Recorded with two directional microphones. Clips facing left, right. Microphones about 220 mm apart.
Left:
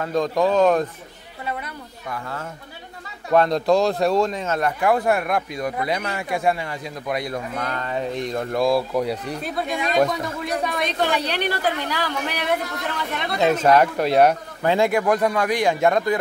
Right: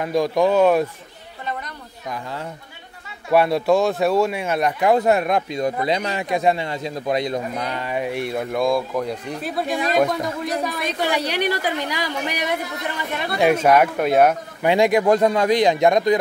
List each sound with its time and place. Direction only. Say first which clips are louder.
0.0 s speech: right 2 dB; 10° right (ahead or behind)
2.0 s speech: right 2 dB; 15° right (ahead or behind)
14.6 s a man's voice: right 3 dB; 15° right (ahead or behind)